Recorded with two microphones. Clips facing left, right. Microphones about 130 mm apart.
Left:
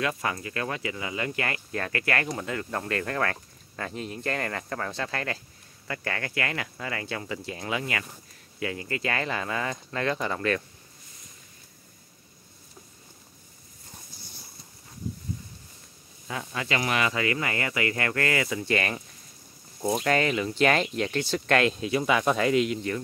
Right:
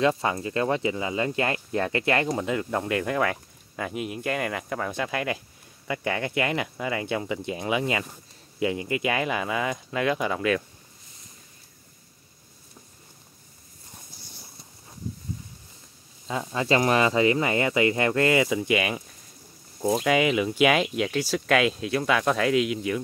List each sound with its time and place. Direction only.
0.0 s speech: 25° right (ahead or behind); by 10.6 s 10° right (ahead or behind)
16.3 s speech: 25° right (ahead or behind); by 22.9 s 5° right (ahead or behind)